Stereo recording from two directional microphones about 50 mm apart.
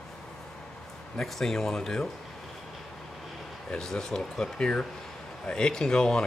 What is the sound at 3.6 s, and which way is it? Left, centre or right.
Speech, centre.